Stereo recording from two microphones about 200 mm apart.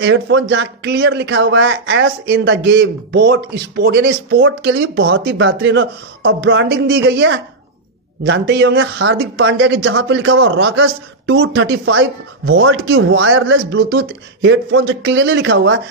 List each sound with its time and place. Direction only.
0.0 s speech: 65° right (ahead or behind); by 9.2 s 90° right
9.2 s speech: 60° right (ahead or behind)